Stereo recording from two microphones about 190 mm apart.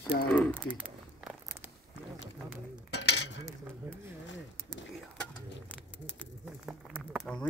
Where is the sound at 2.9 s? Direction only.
70° left (ahead or behind).